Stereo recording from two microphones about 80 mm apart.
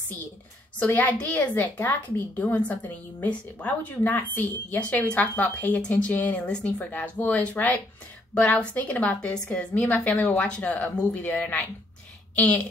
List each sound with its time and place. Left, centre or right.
0.7 s a woman's voice: centre